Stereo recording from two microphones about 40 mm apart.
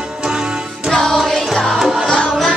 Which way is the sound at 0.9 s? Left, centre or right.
Centre.